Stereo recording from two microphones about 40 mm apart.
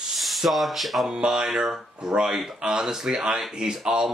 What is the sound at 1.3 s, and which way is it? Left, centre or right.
Speech, centre.